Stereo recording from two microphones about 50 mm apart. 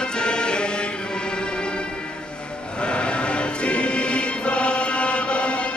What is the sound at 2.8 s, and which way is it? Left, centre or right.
Music, left.